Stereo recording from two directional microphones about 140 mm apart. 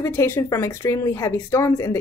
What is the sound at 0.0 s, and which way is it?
A woman's voice, 20° left (ahead or behind).